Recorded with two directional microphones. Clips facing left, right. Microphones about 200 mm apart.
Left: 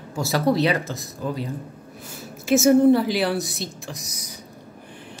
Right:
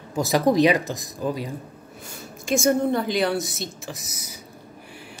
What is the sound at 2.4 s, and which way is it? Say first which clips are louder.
Speech: left 6 dB; 5° left (ahead or behind).